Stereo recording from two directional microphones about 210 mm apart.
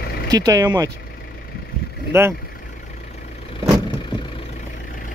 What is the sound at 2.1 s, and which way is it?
Speech, 10° right (ahead or behind).